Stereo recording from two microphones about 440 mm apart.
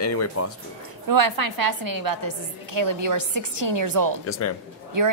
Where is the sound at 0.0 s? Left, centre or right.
Left.